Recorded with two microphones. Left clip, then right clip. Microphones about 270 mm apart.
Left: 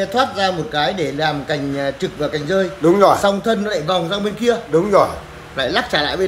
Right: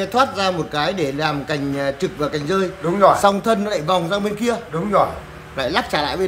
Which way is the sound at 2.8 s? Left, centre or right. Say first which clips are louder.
Left 2 dB; left.